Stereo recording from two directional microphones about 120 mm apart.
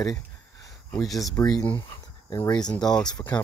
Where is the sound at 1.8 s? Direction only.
30° left (ahead or behind).